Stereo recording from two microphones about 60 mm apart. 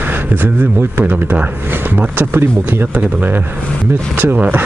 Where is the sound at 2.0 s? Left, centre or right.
Right.